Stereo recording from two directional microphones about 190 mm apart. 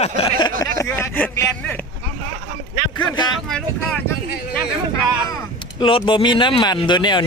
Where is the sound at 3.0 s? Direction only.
25° left (ahead or behind).